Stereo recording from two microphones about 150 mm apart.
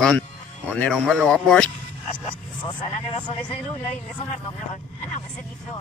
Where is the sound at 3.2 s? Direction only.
30° left (ahead or behind).